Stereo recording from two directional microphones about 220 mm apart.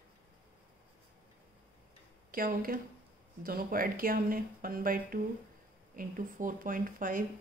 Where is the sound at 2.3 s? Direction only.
40° right (ahead or behind).